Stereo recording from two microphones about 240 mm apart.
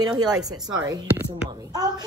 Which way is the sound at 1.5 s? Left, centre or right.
Centre.